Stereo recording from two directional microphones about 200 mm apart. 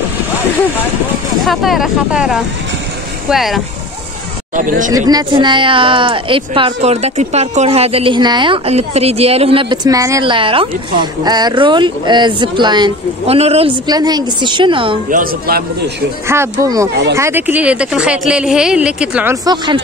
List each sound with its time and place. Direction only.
1.4 s speech: centre (ahead or behind)
4.6 s speech: 40° right (ahead or behind)
5.1 s speech: 25° right (ahead or behind)
15.0 s speech: 45° right (ahead or behind)
16.3 s speech: 15° right (ahead or behind)
19.4 s speech: 20° right (ahead or behind)